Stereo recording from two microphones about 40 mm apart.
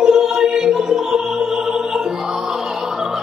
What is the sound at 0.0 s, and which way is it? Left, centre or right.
Music, centre.